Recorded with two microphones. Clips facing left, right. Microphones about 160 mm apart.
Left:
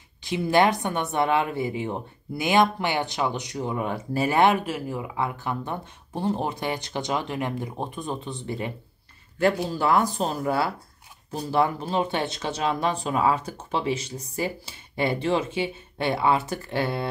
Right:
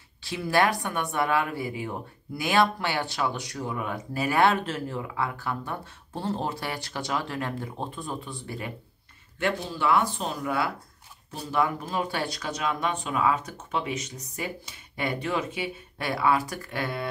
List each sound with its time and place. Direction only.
0.2 s speech: 20° left (ahead or behind)
9.4 s speech: 40° left (ahead or behind)